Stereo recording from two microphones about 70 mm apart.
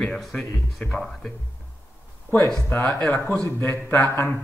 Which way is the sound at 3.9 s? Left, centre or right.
Left.